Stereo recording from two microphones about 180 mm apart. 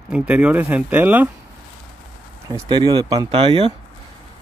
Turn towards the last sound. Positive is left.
turn(degrees=-30)  # may be behind; listen again after turning